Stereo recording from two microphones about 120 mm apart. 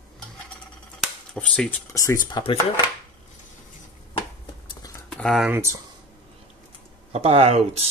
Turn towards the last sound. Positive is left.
turn(degrees=-60)  # may be behind; listen again after turning